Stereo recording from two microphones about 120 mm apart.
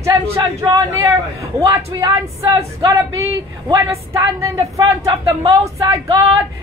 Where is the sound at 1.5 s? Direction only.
25° right (ahead or behind).